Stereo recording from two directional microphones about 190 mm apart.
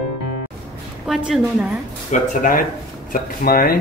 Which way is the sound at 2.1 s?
45° left (ahead or behind).